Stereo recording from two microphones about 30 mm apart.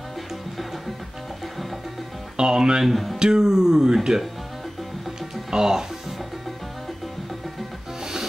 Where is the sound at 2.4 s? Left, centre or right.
Right.